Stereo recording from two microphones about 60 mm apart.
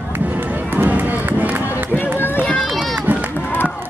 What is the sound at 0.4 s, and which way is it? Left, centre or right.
Run, right.